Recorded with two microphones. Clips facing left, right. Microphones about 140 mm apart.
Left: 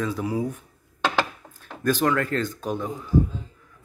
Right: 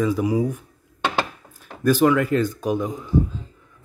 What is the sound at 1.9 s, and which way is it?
Speech, 10° right (ahead or behind).